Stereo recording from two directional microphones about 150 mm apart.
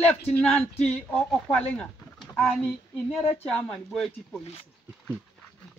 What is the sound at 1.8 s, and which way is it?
Speech, 5° left (ahead or behind).